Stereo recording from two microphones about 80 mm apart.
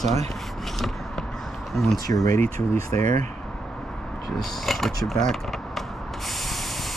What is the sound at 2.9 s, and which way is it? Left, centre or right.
Speech, left.